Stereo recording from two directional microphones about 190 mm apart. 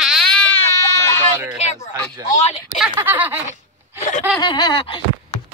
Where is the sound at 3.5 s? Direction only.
40° left (ahead or behind).